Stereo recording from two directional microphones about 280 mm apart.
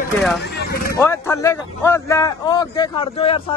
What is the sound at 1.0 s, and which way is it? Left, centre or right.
A man's voice, centre.